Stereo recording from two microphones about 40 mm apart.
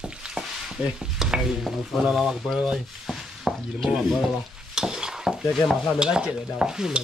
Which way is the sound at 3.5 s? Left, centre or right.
Centre.